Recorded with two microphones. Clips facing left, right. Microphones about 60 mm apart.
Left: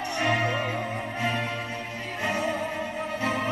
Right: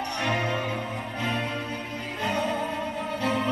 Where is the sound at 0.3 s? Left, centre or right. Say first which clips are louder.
Left 1 dB; left.